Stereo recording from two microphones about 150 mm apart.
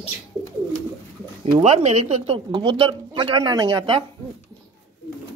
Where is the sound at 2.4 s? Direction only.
35° right (ahead or behind).